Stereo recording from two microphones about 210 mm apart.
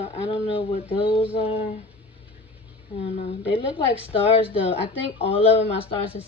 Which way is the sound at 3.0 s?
30° left (ahead or behind).